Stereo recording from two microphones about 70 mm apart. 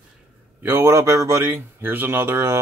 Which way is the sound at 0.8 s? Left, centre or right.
Right.